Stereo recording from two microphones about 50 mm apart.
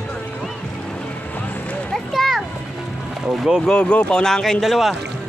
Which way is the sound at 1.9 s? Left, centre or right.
Centre.